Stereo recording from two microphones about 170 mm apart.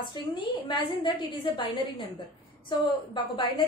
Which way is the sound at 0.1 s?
25° left (ahead or behind).